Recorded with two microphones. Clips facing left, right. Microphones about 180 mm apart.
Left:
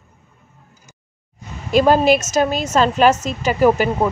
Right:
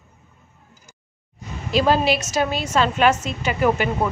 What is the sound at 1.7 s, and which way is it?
A woman's voice, 50° left (ahead or behind).